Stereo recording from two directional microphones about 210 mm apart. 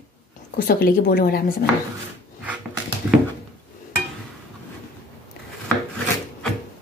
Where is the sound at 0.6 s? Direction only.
45° left (ahead or behind).